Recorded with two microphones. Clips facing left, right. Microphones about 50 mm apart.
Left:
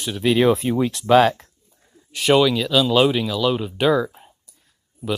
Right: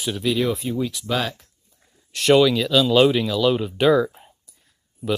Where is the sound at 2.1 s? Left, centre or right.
Centre.